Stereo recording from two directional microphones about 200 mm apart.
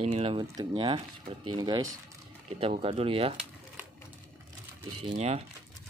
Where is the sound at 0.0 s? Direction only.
30° right (ahead or behind).